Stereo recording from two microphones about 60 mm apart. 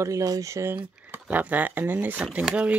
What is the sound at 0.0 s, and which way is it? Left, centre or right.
Speech, right.